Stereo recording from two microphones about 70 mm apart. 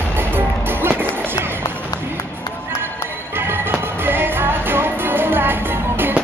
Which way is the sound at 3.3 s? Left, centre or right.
Right.